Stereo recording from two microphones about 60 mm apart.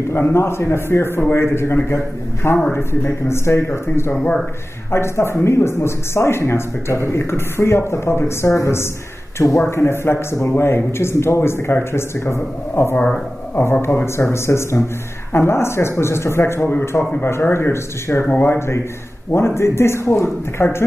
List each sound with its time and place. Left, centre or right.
0.1 s speech: left
2.5 s a man's voice: left
3.3 s speech: left
4.1 s a man's voice: left
4.9 s speech: left